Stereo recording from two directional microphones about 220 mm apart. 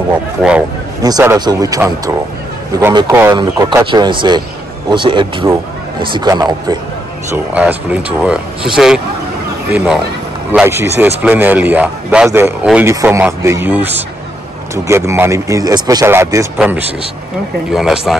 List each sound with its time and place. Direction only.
0.4 s a man's voice: 5° right (ahead or behind)
7.5 s a man's voice: 5° right (ahead or behind)